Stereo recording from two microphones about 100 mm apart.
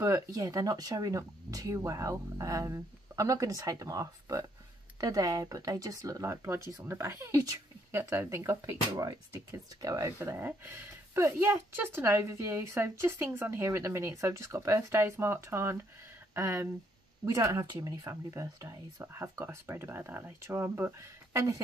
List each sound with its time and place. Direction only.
0.0 s speech: 30° right (ahead or behind)
9.8 s speech: 35° right (ahead or behind)